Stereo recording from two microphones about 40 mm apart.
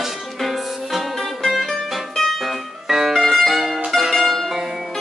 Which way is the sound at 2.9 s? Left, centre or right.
Centre.